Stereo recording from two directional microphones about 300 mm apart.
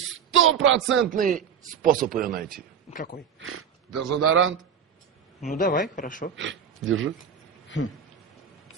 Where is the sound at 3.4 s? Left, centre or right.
Right.